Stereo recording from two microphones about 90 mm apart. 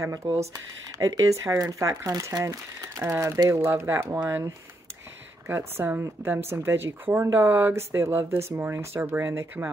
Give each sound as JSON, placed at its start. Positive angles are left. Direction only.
{"t": 0.0, "sound": "speech", "side_deg": -35}
{"t": 5.5, "sound": "speech", "side_deg": -30}